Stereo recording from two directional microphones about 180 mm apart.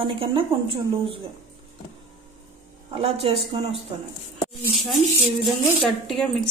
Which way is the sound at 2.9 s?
30° right (ahead or behind).